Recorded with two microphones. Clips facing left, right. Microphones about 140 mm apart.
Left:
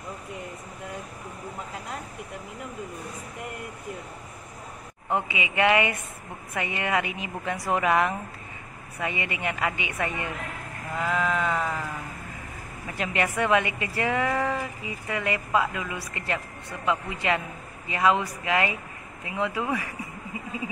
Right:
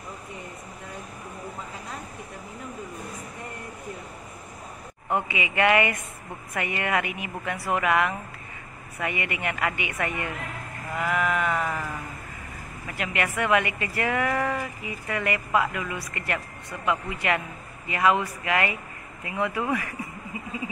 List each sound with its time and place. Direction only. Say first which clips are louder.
5.3 s a woman's voice: right 1 dB; 20° left (ahead or behind)
11.2 s sheep: even; 10° right (ahead or behind)
12.9 s a woman's voice: left 1 dB; 30° left (ahead or behind)